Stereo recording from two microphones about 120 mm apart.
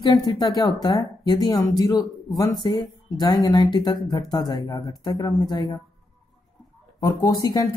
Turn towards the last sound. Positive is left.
turn(degrees=30)  # may be behind; listen again after turning